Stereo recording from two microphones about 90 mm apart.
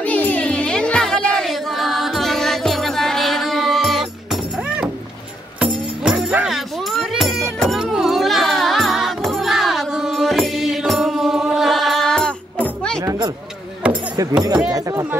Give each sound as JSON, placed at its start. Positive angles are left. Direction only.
{"t": 0.0, "sound": "music", "side_deg": 15}
{"t": 13.0, "sound": "a sound", "side_deg": -40}
{"t": 14.7, "sound": "speech", "side_deg": -40}